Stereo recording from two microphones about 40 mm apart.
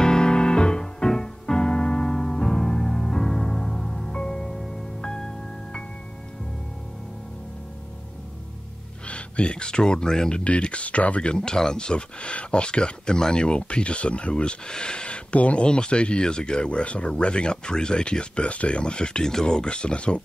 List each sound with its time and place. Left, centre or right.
0.0 s music: centre
9.0 s speech: left
10.4 s speech: left